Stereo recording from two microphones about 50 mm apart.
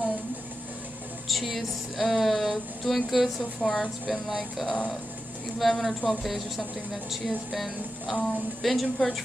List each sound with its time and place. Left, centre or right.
1.3 s speech: centre
4.1 s speech: centre